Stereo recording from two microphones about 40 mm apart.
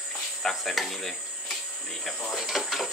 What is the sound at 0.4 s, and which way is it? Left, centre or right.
Speech, centre.